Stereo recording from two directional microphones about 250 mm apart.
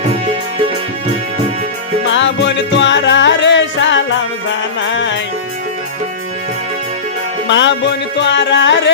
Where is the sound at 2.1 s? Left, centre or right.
Left.